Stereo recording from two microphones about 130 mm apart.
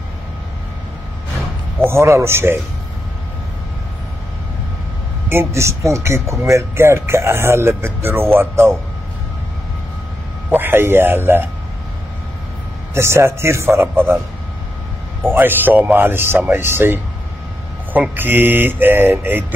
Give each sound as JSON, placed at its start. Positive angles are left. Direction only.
{"t": 1.8, "sound": "speech", "side_deg": -20}
{"t": 5.3, "sound": "speech", "side_deg": -20}
{"t": 10.5, "sound": "speech", "side_deg": -15}
{"t": 12.9, "sound": "speech", "side_deg": -20}
{"t": 15.2, "sound": "speech", "side_deg": -15}